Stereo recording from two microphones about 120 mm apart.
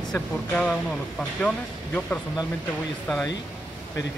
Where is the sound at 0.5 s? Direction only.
Centre (ahead or behind).